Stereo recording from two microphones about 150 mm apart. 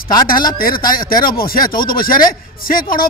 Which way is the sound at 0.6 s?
75° left (ahead or behind).